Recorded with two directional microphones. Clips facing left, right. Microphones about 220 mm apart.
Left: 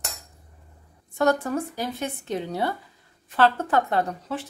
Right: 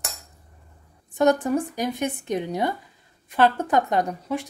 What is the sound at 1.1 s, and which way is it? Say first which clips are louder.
Speech: right 3 dB; 15° right (ahead or behind).